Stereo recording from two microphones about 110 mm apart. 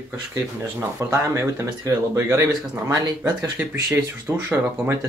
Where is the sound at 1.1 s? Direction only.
25° right (ahead or behind).